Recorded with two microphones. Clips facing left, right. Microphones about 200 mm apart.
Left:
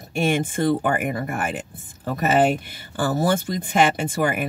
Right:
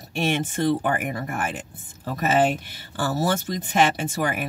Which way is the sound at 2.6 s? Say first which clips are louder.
Left 3 dB; 55° left (ahead or behind).